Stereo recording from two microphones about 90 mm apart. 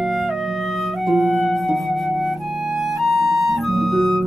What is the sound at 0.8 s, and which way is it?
Flute, centre (ahead or behind).